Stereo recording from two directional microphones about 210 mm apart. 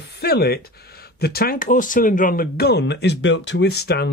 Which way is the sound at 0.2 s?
50° left (ahead or behind).